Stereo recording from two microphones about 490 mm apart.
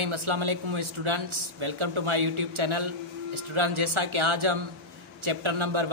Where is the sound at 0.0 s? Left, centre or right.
Right.